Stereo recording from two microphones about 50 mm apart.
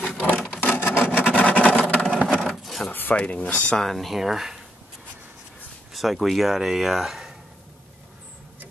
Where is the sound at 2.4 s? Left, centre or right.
Centre.